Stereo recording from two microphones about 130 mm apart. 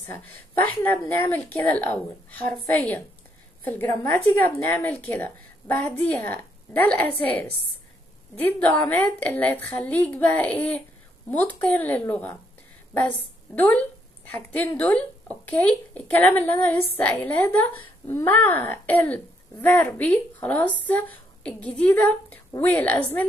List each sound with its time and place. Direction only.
0.0 s speech: 15° left (ahead or behind)
13.6 s a woman's voice: 10° left (ahead or behind)